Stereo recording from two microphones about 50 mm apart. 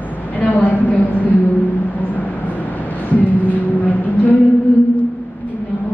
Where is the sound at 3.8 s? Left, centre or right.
Left.